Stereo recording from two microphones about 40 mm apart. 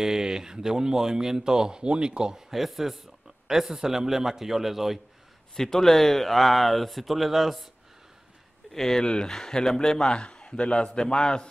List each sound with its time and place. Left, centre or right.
0.0 s speech: centre
2.5 s speech: centre
5.6 s speech: centre
8.7 s a man's voice: centre
9.0 s a man's voice: left
10.1 s a man's voice: left